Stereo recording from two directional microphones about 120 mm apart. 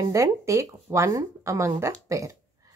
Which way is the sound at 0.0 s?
25° right (ahead or behind).